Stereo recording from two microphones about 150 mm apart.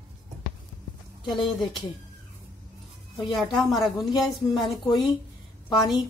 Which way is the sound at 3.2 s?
Centre (ahead or behind).